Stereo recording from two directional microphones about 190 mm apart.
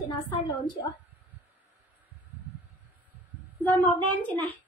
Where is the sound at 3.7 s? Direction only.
10° left (ahead or behind).